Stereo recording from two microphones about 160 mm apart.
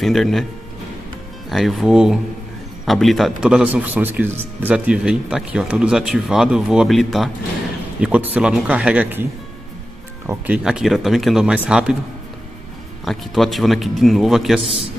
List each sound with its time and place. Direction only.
0.0 s speech: centre (ahead or behind)
1.5 s speech: centre (ahead or behind)
13.0 s speech: centre (ahead or behind)
14.6 s a man's voice: 35° right (ahead or behind)